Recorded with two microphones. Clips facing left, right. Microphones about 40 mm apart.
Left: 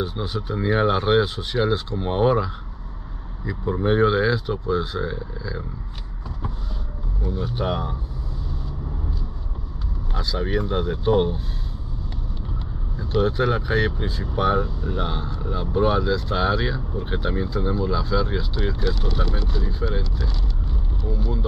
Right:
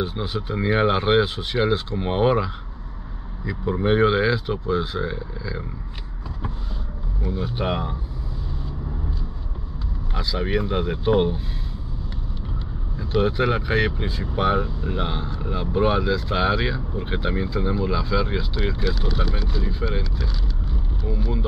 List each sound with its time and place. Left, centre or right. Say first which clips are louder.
0.0 s speech: even; right
3.8 s speech: even; right
7.2 s speech: even; right
10.1 s speech: right 1 dB; right
12.9 s speech: even; right